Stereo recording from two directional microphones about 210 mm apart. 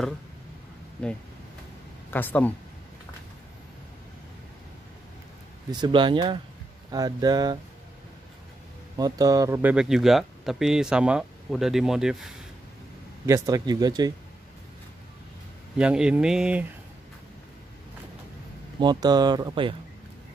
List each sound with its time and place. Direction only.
2.0 s speech: 10° left (ahead or behind)
5.7 s speech: 20° right (ahead or behind)
8.9 s speech: 15° right (ahead or behind)
13.2 s speech: 15° right (ahead or behind)
15.8 s speech: 5° right (ahead or behind)
18.8 s speech: 20° right (ahead or behind)